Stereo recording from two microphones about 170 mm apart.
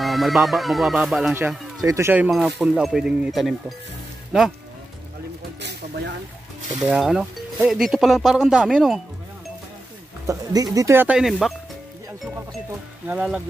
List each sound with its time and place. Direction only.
0.0 s speech: centre (ahead or behind)
1.8 s speech: 20° right (ahead or behind)
5.6 s speech: 90° right
6.8 s speech: 5° right (ahead or behind)
10.2 s speech: 20° right (ahead or behind); by 11.5 s centre (ahead or behind)
13.0 s speech: 5° right (ahead or behind)